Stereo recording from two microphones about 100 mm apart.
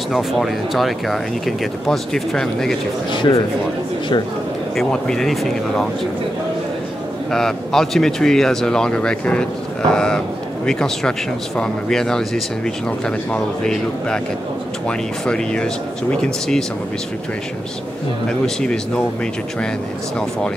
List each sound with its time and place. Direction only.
0.1 s speech: centre (ahead or behind)
3.1 s speech: 50° left (ahead or behind)
4.7 s speech: 5° left (ahead or behind)
7.2 s speech: 5° left (ahead or behind)
18.4 s speech: 10° left (ahead or behind)